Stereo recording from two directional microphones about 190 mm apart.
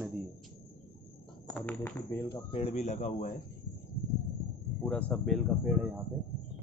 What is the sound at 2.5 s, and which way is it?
Speech, 35° left (ahead or behind).